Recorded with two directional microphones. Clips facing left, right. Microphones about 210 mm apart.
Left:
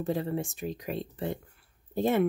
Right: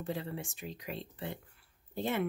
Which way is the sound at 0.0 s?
45° left (ahead or behind).